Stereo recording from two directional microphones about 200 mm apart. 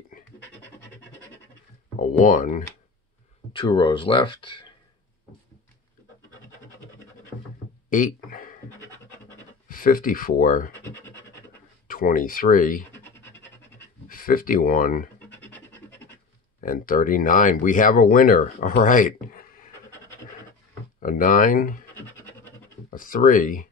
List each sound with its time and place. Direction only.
2.0 s speech: 40° left (ahead or behind)
3.5 s speech: 25° left (ahead or behind)
7.9 s a sound: 40° left (ahead or behind)
9.7 s speech: 45° left (ahead or behind)
10.8 s scratch: 10° left (ahead or behind)
11.9 s speech: 45° left (ahead or behind)
12.9 s rub: 10° left (ahead or behind)
14.0 s speech: 45° left (ahead or behind)
15.1 s scratch: 10° left (ahead or behind)
16.6 s speech: 45° left (ahead or behind)
21.0 s speech: 40° left (ahead or behind)
21.9 s scratch: 10° left (ahead or behind)
22.9 s speech: 45° left (ahead or behind)